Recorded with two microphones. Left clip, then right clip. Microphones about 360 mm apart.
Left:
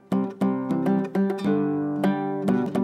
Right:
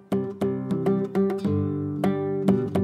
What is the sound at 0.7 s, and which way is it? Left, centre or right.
Music, left.